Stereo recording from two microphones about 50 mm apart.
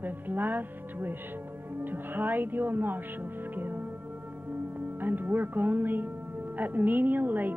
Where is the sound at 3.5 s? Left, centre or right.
Right.